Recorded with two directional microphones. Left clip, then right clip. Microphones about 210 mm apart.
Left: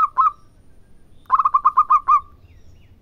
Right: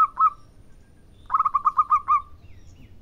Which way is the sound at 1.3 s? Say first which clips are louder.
Left 6 dB; 25° left (ahead or behind).